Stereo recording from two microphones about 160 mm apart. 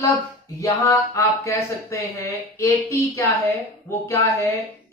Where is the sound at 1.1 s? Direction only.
20° left (ahead or behind).